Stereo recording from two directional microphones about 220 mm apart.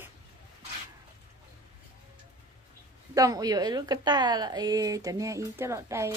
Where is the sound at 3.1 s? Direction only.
15° right (ahead or behind).